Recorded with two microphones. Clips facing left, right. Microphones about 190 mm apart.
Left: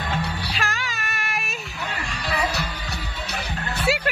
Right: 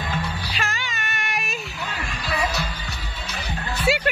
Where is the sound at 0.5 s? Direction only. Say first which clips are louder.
Left 1 dB; centre (ahead or behind).